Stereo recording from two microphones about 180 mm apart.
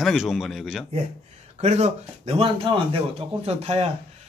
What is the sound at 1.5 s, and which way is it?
Speech, 35° right (ahead or behind).